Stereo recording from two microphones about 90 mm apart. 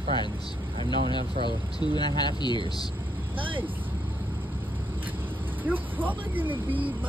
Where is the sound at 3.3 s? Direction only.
70° right (ahead or behind).